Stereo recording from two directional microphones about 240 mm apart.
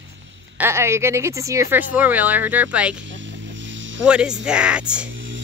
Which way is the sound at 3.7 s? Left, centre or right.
Right.